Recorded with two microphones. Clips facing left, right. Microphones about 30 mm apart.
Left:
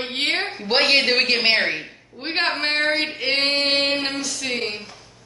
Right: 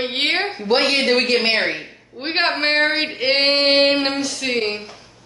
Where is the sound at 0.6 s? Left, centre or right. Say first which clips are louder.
Even; centre.